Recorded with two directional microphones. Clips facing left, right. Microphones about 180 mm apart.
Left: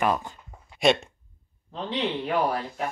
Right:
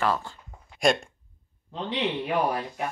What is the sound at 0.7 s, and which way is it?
Speech, centre (ahead or behind).